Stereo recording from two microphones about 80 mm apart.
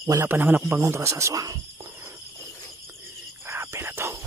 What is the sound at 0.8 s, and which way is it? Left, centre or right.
Speech, right.